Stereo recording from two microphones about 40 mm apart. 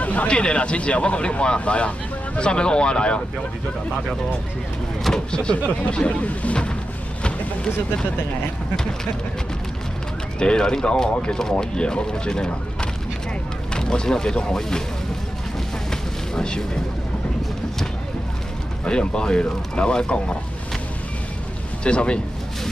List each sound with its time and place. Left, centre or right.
0.0 s a sound: left
0.3 s speech: left
5.1 s speech: left
10.4 s speech: centre
13.7 s speech: centre
15.9 s a sound: centre
18.9 s speech: left
21.8 s speech: left